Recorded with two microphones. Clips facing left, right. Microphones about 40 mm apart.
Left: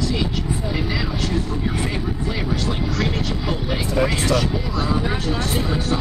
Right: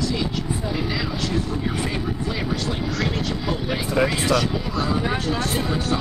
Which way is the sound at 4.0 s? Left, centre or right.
Centre.